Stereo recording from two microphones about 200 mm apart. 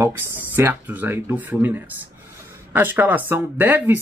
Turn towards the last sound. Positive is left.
turn(degrees=-10)  # may be behind; listen again after turning